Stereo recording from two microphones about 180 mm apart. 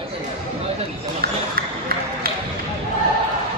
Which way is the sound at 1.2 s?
60° right (ahead or behind).